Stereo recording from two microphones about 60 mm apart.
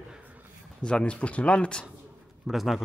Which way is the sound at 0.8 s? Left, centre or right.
Centre.